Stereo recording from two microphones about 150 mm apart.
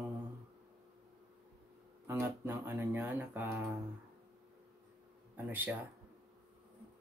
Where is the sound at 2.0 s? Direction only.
20° right (ahead or behind).